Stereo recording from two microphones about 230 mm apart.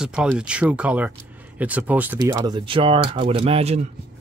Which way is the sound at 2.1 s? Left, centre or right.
Centre.